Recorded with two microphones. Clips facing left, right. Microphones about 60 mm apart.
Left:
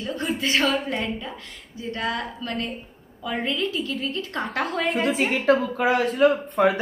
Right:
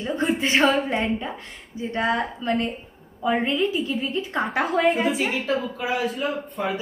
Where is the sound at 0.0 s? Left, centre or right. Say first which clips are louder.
Right 3 dB; right.